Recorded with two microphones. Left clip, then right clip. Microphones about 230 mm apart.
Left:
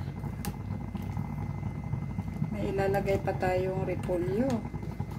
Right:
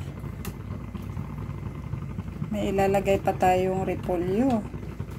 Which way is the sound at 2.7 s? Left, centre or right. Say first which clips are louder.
Right 6 dB; centre.